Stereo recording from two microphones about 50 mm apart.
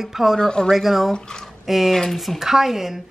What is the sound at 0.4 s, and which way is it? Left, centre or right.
Speech, centre.